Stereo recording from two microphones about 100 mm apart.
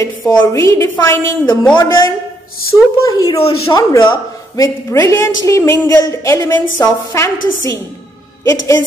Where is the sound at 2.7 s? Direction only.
20° left (ahead or behind).